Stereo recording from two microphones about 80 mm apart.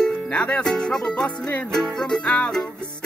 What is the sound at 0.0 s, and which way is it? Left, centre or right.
Music, centre.